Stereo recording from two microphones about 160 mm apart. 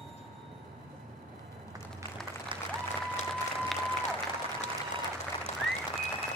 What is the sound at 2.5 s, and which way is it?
Applause, 30° right (ahead or behind).